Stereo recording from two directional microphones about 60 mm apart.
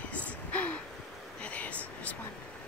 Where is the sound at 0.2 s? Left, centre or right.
Left.